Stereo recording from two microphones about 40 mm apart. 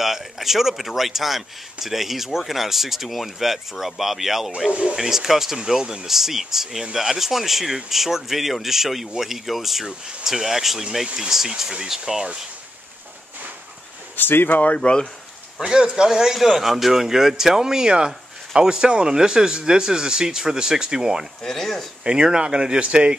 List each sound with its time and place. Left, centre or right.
0.0 s speech: centre
4.6 s speech: right
4.9 s speech: centre
14.1 s speech: left
14.5 s speech: left
14.8 s speech: left
15.6 s speech: centre
21.4 s speech: centre
22.0 s speech: centre